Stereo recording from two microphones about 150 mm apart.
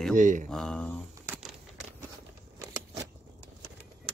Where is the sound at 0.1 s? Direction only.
55° right (ahead or behind).